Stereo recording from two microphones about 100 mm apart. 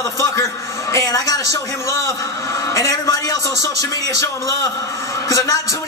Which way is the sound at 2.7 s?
35° left (ahead or behind).